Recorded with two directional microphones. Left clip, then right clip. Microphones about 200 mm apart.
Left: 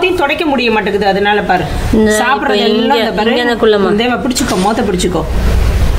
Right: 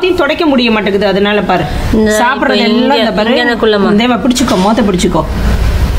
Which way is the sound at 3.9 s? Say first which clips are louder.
Right 2 dB; 30° right (ahead or behind).